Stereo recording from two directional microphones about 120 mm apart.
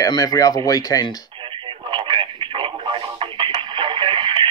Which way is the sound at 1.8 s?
45° right (ahead or behind).